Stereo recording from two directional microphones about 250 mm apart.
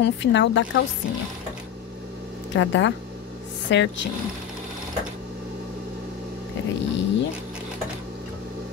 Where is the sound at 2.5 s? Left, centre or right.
Left.